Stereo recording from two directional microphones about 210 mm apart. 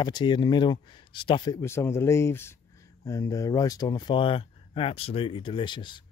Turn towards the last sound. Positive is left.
turn(degrees=20)  # may be behind; listen again after turning